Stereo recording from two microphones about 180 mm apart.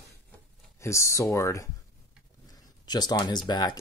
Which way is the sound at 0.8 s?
15° left (ahead or behind).